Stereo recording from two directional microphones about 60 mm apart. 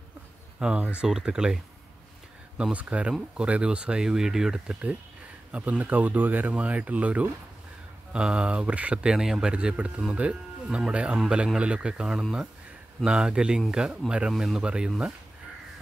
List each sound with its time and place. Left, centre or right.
0.6 s speech: centre
5.6 s speech: right
14.3 s speech: centre
14.6 s speech: centre